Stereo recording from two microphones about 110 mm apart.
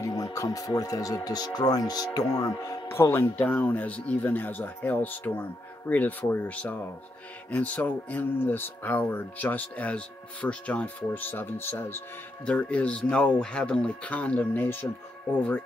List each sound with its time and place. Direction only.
0.0 s speech: 35° left (ahead or behind)
2.9 s speech: 20° left (ahead or behind)